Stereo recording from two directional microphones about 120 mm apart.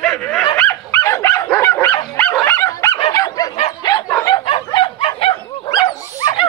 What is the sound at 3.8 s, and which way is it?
Dog, 35° left (ahead or behind).